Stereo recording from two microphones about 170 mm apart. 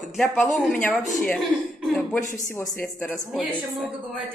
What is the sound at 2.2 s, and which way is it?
Speech, 50° left (ahead or behind).